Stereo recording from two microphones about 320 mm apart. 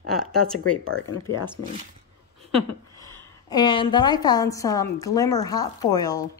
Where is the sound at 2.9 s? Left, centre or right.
Centre.